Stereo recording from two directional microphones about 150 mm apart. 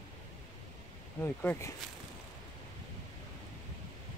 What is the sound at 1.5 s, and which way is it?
Speech, 5° left (ahead or behind).